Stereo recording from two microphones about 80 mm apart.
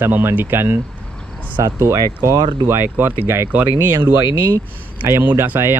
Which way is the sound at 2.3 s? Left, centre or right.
Right.